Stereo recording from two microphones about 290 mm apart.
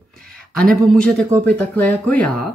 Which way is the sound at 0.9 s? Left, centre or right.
Centre.